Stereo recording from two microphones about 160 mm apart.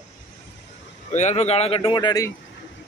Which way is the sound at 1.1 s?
45° left (ahead or behind).